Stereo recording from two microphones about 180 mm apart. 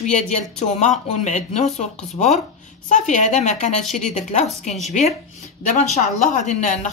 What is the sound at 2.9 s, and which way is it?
Speech, 45° left (ahead or behind).